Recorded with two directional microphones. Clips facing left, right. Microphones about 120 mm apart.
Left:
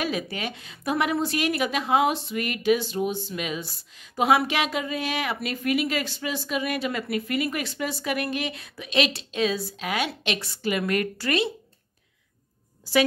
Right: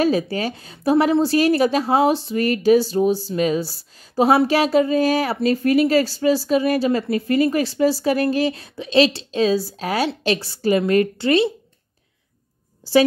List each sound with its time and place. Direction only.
0.0 s speech: 35° right (ahead or behind)